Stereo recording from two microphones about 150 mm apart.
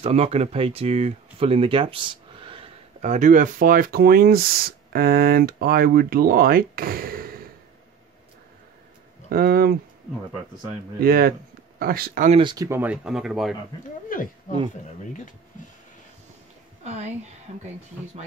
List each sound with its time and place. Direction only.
0.0 s speech: 45° right (ahead or behind)
3.0 s speech: 55° right (ahead or behind); by 7.4 s 80° right
9.3 s speech: 80° right
11.0 s speech: 80° right
12.3 s speech: 35° right (ahead or behind)
12.5 s speech: 15° right (ahead or behind); by 13.6 s centre (ahead or behind)
14.1 s speech: 65° left (ahead or behind)
16.8 s a woman's voice: 45° right (ahead or behind)